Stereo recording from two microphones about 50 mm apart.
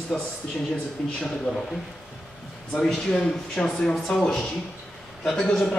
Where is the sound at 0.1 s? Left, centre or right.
Centre.